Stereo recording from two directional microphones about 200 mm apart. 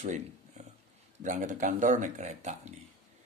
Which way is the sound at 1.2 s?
40° right (ahead or behind).